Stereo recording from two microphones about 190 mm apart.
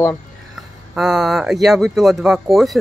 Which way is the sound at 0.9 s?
Centre (ahead or behind).